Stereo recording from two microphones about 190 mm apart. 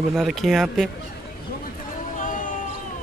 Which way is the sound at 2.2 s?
45° left (ahead or behind).